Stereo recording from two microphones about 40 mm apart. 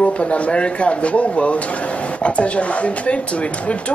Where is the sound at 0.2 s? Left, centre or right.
Left.